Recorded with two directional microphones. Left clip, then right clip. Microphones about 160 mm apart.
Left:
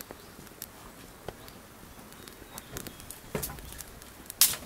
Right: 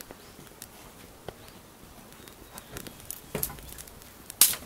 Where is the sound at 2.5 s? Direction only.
Centre (ahead or behind).